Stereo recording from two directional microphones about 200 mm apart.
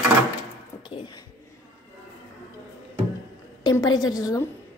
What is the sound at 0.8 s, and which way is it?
Speech, 20° left (ahead or behind).